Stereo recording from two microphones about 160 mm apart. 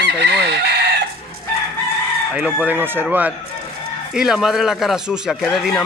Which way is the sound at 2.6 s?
10° right (ahead or behind).